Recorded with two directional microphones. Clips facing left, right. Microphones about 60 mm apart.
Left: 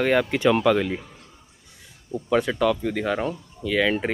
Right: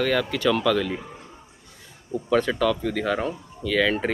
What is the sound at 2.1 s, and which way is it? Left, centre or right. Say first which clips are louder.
Speech: even; centre.